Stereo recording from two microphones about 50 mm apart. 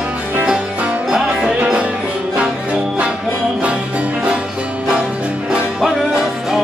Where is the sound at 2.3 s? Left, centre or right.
Right.